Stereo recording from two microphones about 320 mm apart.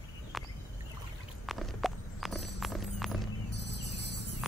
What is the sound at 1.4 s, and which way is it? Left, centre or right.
Clip-clop, centre.